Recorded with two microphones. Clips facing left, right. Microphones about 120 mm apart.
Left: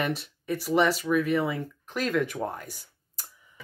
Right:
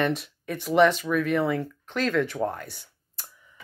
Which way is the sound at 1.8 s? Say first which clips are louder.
Right 2 dB; 10° left (ahead or behind).